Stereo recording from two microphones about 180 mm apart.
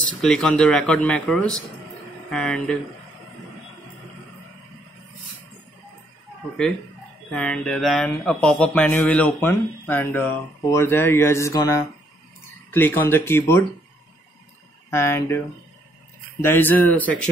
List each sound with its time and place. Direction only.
0.2 s speech: 5° left (ahead or behind)
7.2 s speech: 5° left (ahead or behind)
14.9 s speech: 15° left (ahead or behind)